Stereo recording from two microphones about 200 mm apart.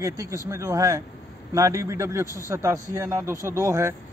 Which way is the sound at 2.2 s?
15° left (ahead or behind).